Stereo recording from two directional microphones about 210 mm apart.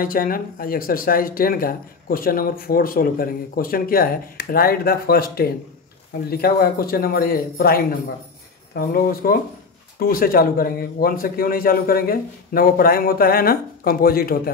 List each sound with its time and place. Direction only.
0.0 s speech: 45° left (ahead or behind)